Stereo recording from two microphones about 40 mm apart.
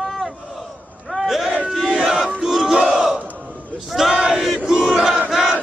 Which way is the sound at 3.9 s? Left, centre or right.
Centre.